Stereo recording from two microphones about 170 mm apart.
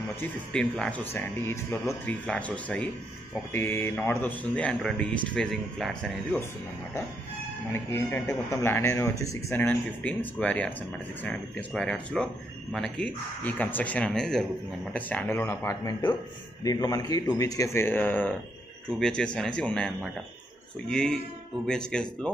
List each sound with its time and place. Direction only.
0.5 s speech: 5° left (ahead or behind)
7.7 s a man's voice: 15° left (ahead or behind)